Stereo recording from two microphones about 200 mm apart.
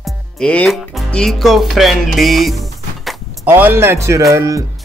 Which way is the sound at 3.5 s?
10° right (ahead or behind).